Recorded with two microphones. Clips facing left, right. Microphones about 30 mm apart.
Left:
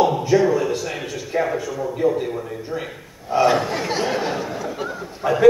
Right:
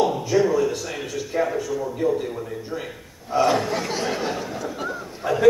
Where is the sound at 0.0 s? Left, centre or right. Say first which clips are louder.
Left 3 dB; centre.